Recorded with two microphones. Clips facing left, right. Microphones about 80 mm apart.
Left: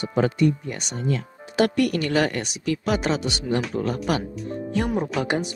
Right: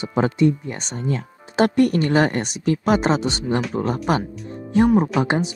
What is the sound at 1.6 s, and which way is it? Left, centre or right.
Speech, right.